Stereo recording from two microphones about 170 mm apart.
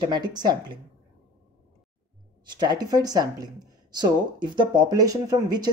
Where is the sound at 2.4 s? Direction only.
25° right (ahead or behind).